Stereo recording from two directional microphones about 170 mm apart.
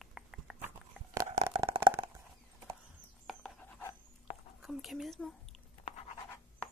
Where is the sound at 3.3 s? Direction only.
5° left (ahead or behind).